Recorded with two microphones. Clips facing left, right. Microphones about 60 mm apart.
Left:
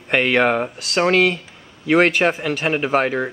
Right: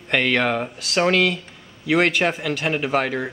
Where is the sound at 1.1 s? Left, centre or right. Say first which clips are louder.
Left 3 dB; left.